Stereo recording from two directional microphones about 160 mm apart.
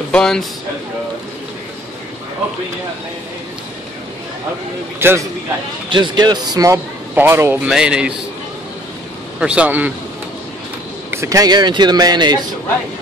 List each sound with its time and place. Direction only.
0.1 s speech: 5° left (ahead or behind)
4.9 s a man's voice: 15° right (ahead or behind)
5.9 s speech: 30° right (ahead or behind)
7.5 s speech: 5° right (ahead or behind)
9.4 s a man's voice: 5° right (ahead or behind)
11.1 s speech: 20° right (ahead or behind)